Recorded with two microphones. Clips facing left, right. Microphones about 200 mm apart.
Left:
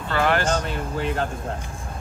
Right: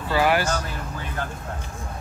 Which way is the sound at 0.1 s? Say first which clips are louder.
Right 1 dB; 10° right (ahead or behind).